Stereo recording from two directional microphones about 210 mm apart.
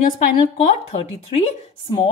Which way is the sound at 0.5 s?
25° left (ahead or behind).